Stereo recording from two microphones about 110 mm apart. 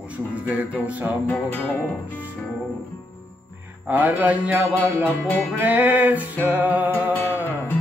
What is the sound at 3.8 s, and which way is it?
Music, 15° right (ahead or behind).